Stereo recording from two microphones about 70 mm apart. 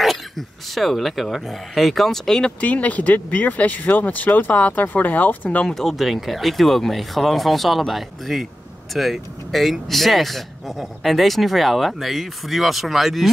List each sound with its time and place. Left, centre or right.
0.0 s speech: centre
2.6 s speech: left
5.8 s speech: centre